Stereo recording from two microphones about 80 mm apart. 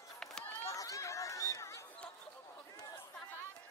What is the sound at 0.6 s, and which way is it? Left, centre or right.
Chatter, left.